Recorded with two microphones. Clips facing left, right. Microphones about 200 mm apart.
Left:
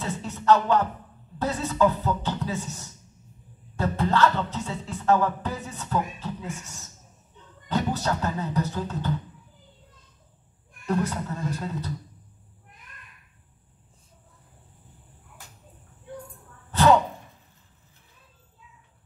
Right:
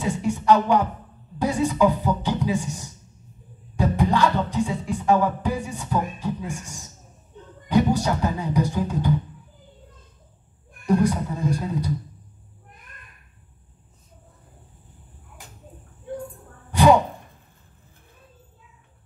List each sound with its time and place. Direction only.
0.0 s music: 15° right (ahead or behind)
10.9 s music: 15° right (ahead or behind)
16.7 s a sound: 15° right (ahead or behind)